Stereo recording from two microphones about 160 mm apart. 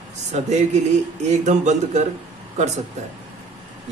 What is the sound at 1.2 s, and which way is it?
Speech, 45° right (ahead or behind).